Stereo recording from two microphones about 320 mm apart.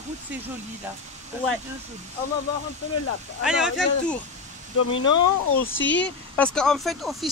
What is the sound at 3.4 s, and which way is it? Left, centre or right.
Speech, centre.